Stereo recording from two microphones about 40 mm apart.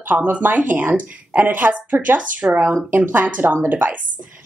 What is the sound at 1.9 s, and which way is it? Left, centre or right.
Speech, right.